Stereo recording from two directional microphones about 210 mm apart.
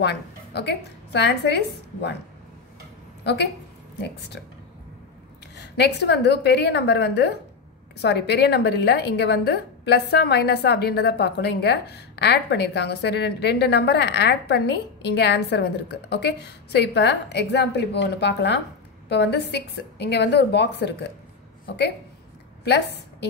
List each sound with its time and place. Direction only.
0.0 s a woman's voice: 50° left (ahead or behind)
5.6 s a woman's voice: 55° left (ahead or behind)